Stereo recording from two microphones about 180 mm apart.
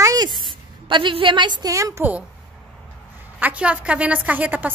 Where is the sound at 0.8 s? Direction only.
25° right (ahead or behind); by 2.2 s 10° right (ahead or behind).